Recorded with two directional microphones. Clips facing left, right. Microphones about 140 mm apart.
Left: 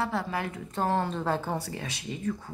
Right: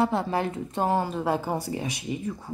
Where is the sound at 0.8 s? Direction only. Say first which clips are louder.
Right 2 dB; 10° right (ahead or behind).